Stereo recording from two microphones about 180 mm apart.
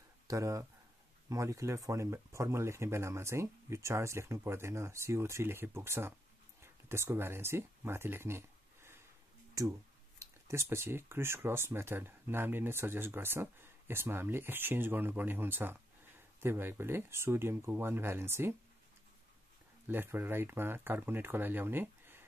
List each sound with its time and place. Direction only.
0.3 s speech: 20° right (ahead or behind)
19.9 s speech: 10° right (ahead or behind)